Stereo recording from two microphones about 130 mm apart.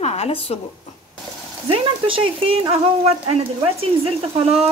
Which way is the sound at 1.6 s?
45° right (ahead or behind).